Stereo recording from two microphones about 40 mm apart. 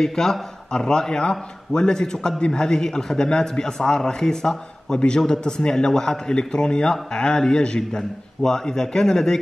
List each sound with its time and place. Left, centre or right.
0.0 s a man's voice: centre